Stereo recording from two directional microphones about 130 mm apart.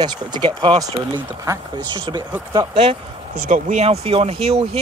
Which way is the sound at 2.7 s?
50° right (ahead or behind).